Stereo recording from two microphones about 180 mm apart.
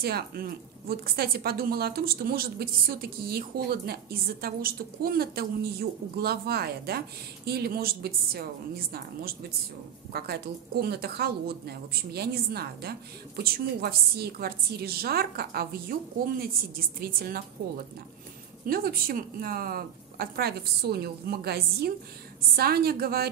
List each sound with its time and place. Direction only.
0.0 s a woman's voice: 60° right (ahead or behind)